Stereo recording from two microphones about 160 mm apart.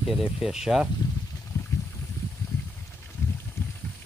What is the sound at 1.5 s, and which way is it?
Boat, 20° left (ahead or behind).